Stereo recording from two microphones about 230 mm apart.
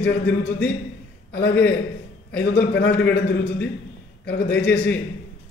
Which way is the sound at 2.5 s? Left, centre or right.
Left.